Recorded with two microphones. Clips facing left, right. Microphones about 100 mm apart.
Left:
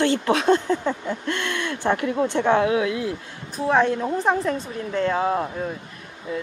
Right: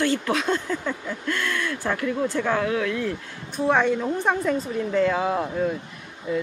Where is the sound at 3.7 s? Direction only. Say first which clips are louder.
Left 1 dB; 5° left (ahead or behind).